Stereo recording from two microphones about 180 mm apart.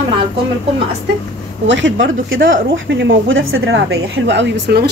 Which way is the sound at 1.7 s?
90° right.